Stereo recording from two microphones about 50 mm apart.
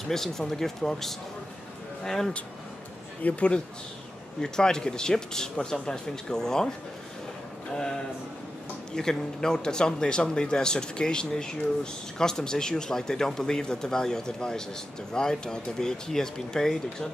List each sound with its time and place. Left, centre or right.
0.1 s speech: centre
3.2 s speech: left
7.7 s speech: centre